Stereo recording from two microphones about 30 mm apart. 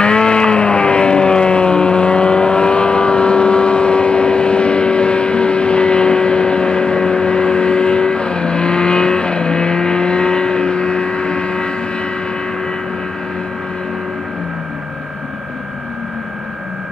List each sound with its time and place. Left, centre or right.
0.0 s vehicle: left